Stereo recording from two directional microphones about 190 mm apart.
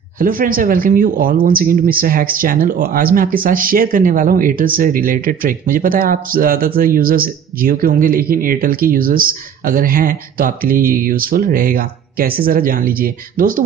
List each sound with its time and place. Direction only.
0.2 s speech: 50° right (ahead or behind)